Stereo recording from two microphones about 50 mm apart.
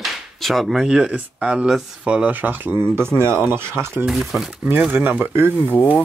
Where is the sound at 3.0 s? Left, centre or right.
Right.